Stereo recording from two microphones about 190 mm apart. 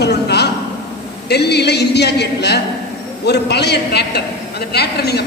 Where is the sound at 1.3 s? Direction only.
60° left (ahead or behind).